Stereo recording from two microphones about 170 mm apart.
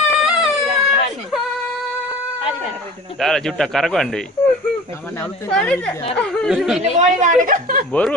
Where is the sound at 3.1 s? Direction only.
Centre (ahead or behind).